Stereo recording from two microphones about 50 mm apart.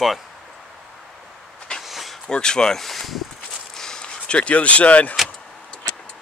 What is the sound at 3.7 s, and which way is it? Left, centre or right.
Vehicle, centre.